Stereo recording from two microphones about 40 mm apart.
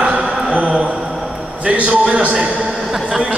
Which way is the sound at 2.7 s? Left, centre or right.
Centre.